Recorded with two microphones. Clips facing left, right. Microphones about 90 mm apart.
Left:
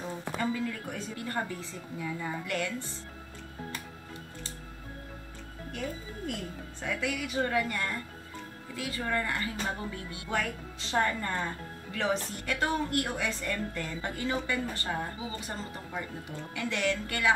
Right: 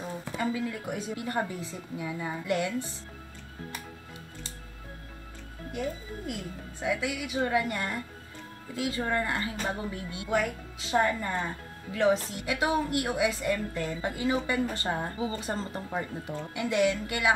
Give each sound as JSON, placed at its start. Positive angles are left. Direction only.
{"t": 0.0, "sound": "a woman's voice", "side_deg": -5}
{"t": 5.7, "sound": "a woman's voice", "side_deg": -5}
{"t": 7.5, "sound": "speech", "side_deg": -20}
{"t": 10.3, "sound": "a woman's voice", "side_deg": -5}
{"t": 15.1, "sound": "speech", "side_deg": -35}
{"t": 16.5, "sound": "a woman's voice", "side_deg": -15}